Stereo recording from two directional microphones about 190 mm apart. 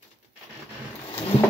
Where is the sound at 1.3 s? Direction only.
30° left (ahead or behind).